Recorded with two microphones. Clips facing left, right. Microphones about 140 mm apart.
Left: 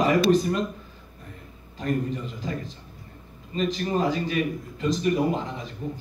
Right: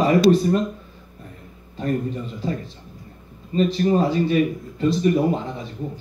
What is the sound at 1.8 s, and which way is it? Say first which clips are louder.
Speech: right 3 dB; 35° right (ahead or behind).